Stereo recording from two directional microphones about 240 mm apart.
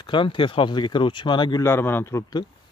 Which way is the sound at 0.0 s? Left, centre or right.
Centre.